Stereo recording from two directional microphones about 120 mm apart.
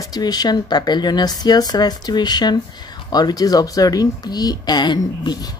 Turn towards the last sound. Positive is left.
turn(degrees=35)  # may be behind; listen again after turning